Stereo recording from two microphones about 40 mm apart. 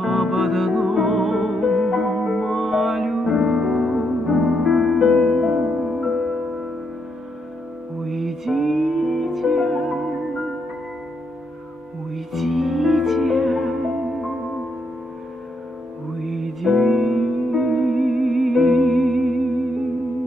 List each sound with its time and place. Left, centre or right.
0.0 s music: centre
5.8 s music: centre
8.0 s music: centre
12.1 s music: centre
16.2 s music: centre